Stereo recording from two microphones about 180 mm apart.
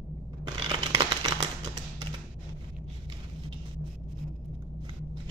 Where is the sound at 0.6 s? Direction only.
25° right (ahead or behind).